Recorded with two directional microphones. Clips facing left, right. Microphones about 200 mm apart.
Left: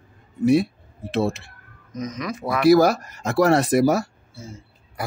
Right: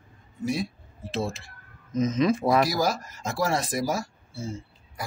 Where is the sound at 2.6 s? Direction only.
60° left (ahead or behind).